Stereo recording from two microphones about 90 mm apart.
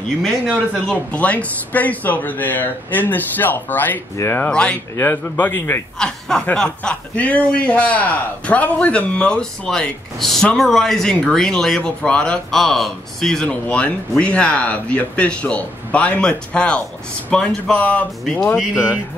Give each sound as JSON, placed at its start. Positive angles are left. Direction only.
{"t": 0.8, "sound": "speech", "side_deg": 15}
{"t": 4.5, "sound": "a man's voice", "side_deg": 10}
{"t": 4.9, "sound": "speech", "side_deg": 25}
{"t": 5.9, "sound": "a man's voice", "side_deg": 5}